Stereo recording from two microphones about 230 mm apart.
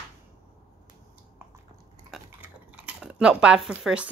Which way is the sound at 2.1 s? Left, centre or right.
Centre.